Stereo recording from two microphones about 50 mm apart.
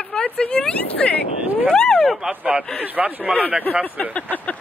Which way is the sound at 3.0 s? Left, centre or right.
Right.